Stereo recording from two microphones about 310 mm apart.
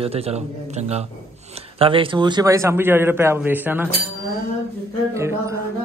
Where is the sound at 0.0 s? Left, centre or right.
Centre.